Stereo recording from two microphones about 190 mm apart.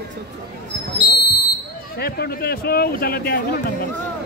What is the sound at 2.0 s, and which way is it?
Speech, 55° left (ahead or behind).